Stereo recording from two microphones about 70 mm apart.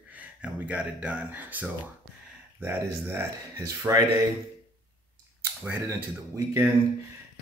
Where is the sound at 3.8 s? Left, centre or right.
Right.